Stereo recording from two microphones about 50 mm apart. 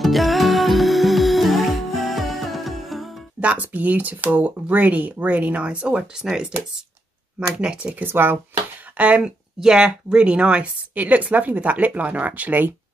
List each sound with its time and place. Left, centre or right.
0.0 s music: centre
3.3 s speech: right
6.1 s a woman's voice: centre
7.9 s speech: right
8.9 s a woman's voice: right